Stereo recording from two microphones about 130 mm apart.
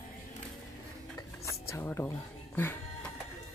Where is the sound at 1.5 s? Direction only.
20° left (ahead or behind).